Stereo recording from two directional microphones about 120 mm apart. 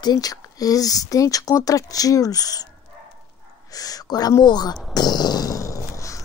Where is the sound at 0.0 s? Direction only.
35° left (ahead or behind).